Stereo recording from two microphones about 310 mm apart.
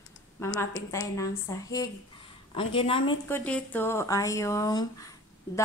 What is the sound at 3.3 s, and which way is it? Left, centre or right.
Speech, centre.